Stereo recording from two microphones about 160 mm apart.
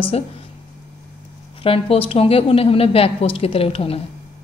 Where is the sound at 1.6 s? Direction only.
35° left (ahead or behind).